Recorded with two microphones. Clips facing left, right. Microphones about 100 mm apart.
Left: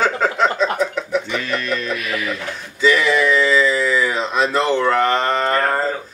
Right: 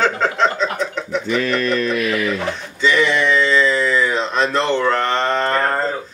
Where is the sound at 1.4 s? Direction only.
45° right (ahead or behind).